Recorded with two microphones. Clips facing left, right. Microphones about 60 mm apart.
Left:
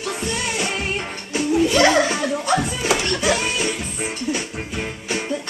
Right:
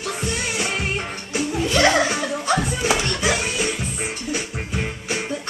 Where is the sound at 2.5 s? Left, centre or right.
Centre.